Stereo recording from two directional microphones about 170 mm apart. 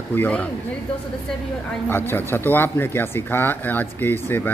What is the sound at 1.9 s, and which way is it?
A man's voice, 10° left (ahead or behind).